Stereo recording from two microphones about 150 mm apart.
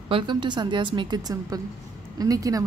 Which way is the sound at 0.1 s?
30° right (ahead or behind).